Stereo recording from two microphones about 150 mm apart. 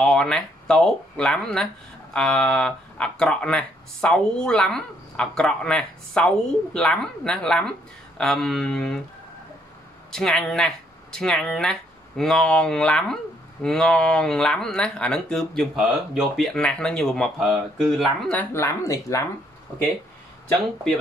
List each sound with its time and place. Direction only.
0.0 s speech: 5° left (ahead or behind)
10.1 s speech: 5° left (ahead or behind)
18.3 s speech: 15° left (ahead or behind)